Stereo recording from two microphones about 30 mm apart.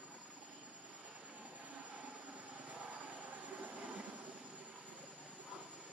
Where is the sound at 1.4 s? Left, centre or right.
Right.